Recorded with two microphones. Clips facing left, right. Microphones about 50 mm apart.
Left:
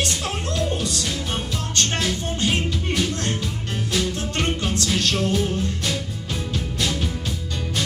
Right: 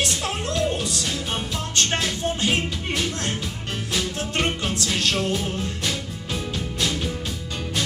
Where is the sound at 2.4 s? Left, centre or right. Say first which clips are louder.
Left 3 dB; centre.